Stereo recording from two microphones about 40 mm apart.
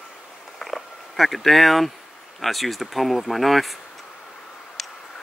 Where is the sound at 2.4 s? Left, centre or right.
Centre.